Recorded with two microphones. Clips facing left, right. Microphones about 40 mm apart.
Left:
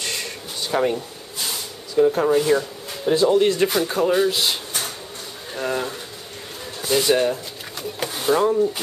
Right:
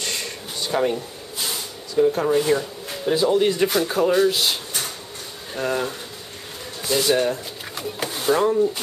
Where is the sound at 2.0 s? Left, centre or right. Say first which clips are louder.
Left 1 dB; centre.